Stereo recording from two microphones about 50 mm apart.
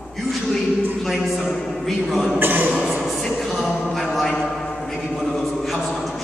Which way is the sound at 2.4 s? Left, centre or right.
Right.